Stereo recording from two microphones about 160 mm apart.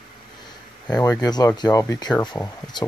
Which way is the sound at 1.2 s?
25° left (ahead or behind).